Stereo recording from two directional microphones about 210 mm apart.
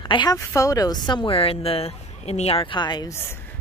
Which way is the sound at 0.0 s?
20° left (ahead or behind).